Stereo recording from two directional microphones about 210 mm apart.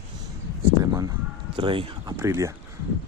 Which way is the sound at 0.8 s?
15° right (ahead or behind).